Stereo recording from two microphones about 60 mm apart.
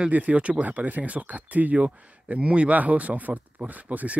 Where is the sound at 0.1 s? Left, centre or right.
Right.